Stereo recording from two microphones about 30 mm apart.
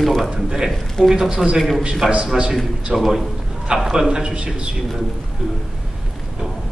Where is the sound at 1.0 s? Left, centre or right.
Centre.